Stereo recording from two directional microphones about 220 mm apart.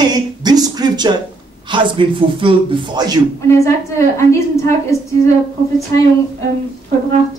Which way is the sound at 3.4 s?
15° left (ahead or behind).